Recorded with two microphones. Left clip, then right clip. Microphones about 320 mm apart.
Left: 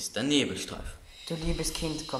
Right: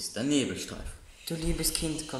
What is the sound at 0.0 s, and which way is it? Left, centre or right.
Speech, left.